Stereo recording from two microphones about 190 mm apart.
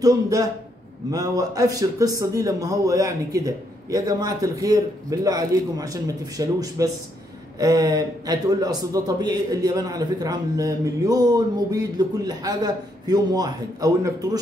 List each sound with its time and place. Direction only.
0.0 s a man's voice: 20° right (ahead or behind)